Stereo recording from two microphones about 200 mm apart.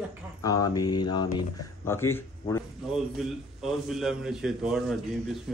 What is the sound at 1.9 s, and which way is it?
Speech, 10° left (ahead or behind).